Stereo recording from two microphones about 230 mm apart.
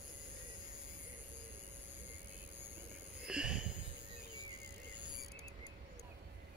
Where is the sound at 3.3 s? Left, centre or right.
Centre.